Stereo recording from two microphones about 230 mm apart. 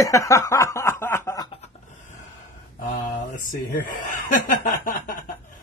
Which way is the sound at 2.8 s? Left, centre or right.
Left.